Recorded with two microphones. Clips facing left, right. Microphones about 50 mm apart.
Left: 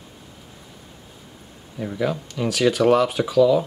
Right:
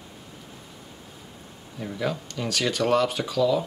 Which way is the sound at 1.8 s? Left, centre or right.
Centre.